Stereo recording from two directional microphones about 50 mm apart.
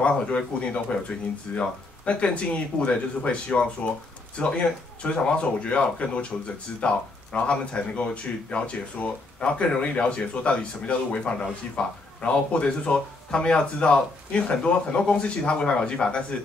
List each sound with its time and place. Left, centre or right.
0.4 s speech: left